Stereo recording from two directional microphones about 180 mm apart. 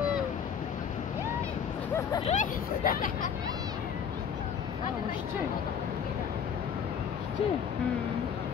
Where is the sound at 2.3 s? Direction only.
50° left (ahead or behind).